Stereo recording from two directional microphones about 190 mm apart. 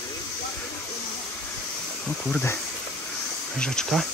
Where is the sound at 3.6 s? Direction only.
Centre (ahead or behind).